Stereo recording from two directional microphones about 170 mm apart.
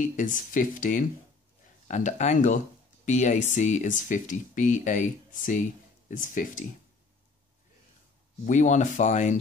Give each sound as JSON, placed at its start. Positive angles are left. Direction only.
{"t": 0.0, "sound": "speech", "side_deg": 50}
{"t": 8.5, "sound": "speech", "side_deg": 45}